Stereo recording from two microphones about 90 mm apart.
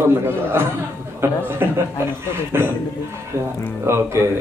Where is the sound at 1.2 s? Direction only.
25° right (ahead or behind).